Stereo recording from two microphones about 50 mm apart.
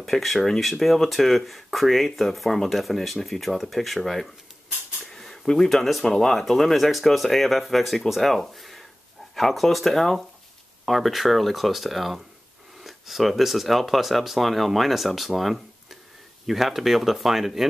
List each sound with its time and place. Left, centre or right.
0.0 s speech: centre